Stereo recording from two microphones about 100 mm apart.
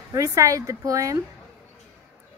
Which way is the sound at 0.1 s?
35° right (ahead or behind).